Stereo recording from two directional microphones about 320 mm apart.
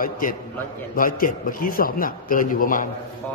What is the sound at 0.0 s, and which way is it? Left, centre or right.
A man's voice, left.